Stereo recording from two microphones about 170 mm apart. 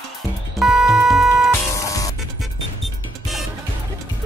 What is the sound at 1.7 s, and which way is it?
Music, 20° left (ahead or behind).